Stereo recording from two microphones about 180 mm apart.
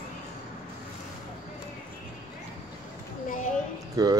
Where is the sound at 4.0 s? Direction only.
20° right (ahead or behind).